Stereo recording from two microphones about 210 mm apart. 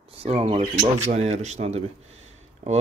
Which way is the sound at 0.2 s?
30° right (ahead or behind).